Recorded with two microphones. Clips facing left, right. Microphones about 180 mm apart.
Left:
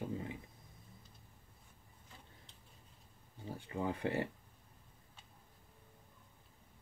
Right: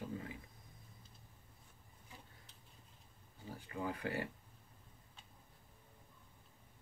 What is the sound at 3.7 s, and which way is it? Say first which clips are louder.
Speech: left 4 dB; 25° left (ahead or behind).